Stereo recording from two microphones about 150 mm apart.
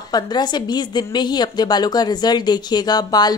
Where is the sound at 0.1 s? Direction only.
30° left (ahead or behind).